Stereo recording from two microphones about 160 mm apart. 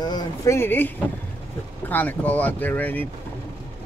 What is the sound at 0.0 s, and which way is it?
Speech, 25° left (ahead or behind).